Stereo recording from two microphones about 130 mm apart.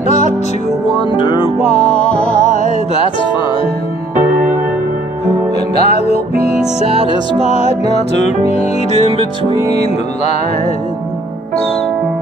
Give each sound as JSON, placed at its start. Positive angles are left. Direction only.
{"t": 1.1, "sound": "music", "side_deg": 40}
{"t": 5.8, "sound": "music", "side_deg": 55}